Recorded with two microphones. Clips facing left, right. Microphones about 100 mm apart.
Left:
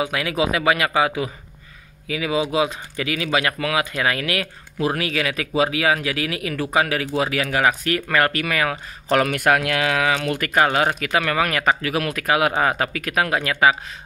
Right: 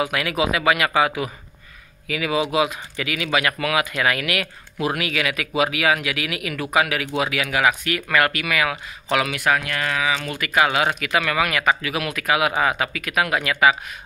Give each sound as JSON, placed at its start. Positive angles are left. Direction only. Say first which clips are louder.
{"t": 0.0, "sound": "speech", "louder": "even", "side_deg": 25}
{"t": 9.6, "sound": "speech", "louder": "left 4 dB", "side_deg": 75}
{"t": 10.5, "sound": "speech", "louder": "even", "side_deg": 40}